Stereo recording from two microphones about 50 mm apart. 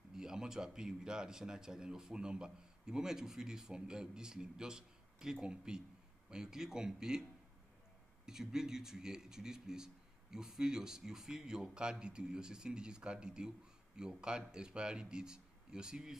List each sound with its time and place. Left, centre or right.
0.1 s speech: centre
8.3 s speech: centre